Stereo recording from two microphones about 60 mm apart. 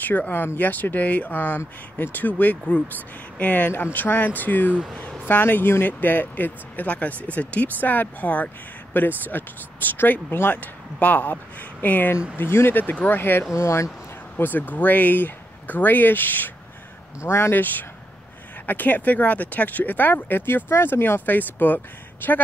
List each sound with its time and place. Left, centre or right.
0.0 s speech: left
13.6 s speech: left
14.4 s speech: left
17.2 s speech: left
18.7 s speech: left